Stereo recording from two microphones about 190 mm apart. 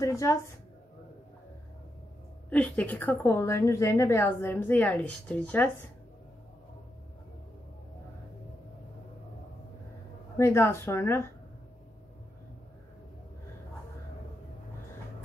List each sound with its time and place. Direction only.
0.0 s a sound: 15° left (ahead or behind)
2.5 s a woman's voice: 10° left (ahead or behind)
10.3 s a woman's voice: 15° left (ahead or behind)